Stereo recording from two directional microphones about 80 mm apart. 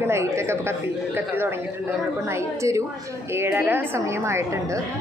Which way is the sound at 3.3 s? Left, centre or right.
Right.